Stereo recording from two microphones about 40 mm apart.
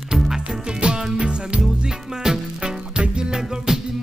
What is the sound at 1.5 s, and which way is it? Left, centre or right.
Music, centre.